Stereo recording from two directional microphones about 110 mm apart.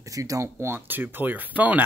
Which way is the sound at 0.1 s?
30° right (ahead or behind).